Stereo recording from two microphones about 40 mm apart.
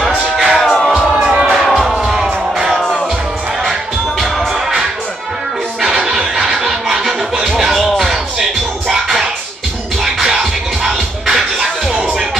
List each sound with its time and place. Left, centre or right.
0.4 s music: centre
0.7 s music: centre
1.1 s music: right
1.7 s music: centre
4.2 s music: centre
6.0 s snicker: centre
6.6 s music: centre
8.8 s music: centre